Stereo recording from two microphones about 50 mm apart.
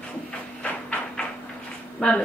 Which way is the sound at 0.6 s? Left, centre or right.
Left.